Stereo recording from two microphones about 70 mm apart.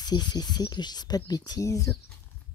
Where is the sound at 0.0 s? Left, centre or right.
Left.